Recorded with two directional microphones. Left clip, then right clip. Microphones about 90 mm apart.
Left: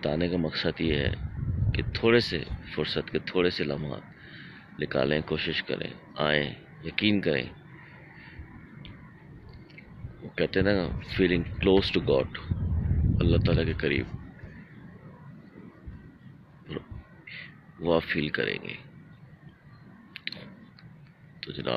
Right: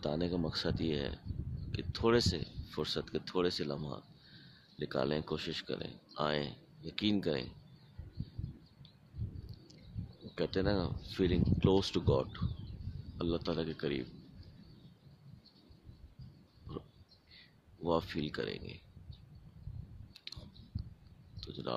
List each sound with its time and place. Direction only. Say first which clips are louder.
0.0 s speech: left 8 dB; 40° right (ahead or behind)
10.3 s speech: left 9 dB; 35° right (ahead or behind)
17.3 s a man's voice: left 18 dB; 30° right (ahead or behind)
20.2 s clicking: left 12 dB; 30° right (ahead or behind)
21.4 s speech: left 9 dB; 30° right (ahead or behind)